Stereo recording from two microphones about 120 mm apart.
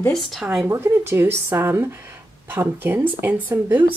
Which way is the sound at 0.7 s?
20° right (ahead or behind).